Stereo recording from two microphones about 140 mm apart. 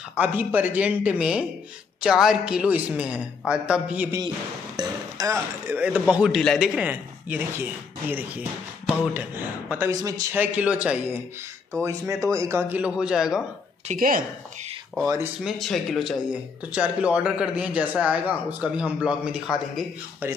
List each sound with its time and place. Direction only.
0.2 s speech: 10° right (ahead or behind)
4.7 s a sound: 25° right (ahead or behind)
5.8 s speech: 10° right (ahead or behind); by 10.3 s 25° right (ahead or behind)
10.3 s speech: 10° right (ahead or behind)
12.3 s speech: 20° right (ahead or behind); by 13.4 s 5° right (ahead or behind)
13.9 s speech: 90° right
15.4 s speech: centre (ahead or behind)